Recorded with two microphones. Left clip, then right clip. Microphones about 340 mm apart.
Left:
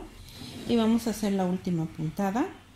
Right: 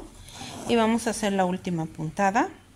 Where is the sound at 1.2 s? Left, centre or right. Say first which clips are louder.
Right 5 dB; right.